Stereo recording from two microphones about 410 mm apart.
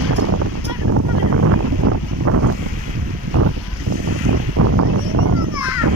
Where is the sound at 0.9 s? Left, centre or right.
Right.